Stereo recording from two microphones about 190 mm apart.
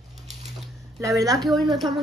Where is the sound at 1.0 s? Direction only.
15° right (ahead or behind).